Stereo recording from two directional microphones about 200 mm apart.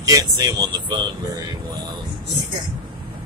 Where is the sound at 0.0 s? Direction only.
20° right (ahead or behind).